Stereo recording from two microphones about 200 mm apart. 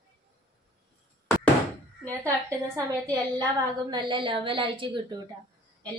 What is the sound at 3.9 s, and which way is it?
Speech, 25° right (ahead or behind).